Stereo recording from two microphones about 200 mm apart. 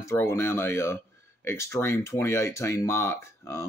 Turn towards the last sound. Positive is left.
turn(degrees=15)  # may be behind; listen again after turning